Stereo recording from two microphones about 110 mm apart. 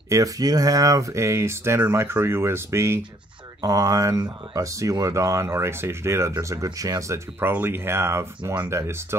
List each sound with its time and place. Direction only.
0.1 s speech: 35° right (ahead or behind)
7.3 s speech: 15° right (ahead or behind)